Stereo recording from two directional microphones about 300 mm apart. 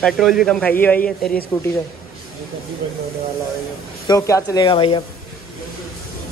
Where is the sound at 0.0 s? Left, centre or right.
Centre.